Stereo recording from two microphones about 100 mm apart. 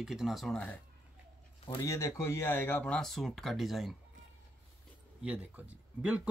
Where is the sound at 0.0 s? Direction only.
5° right (ahead or behind).